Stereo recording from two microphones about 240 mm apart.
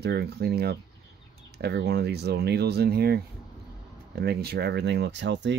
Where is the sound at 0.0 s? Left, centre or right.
Right.